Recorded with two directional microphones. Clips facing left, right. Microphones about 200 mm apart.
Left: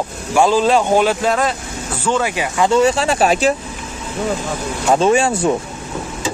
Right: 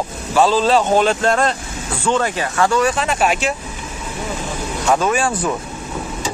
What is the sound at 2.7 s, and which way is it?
Speech, 25° left (ahead or behind).